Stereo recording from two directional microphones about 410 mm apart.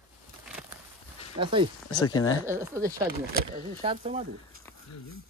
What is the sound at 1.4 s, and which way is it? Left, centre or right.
Speech, centre.